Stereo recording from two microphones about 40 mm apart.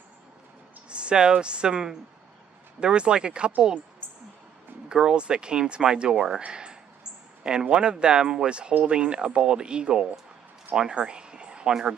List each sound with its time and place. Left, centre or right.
0.8 s speech: right
4.9 s speech: right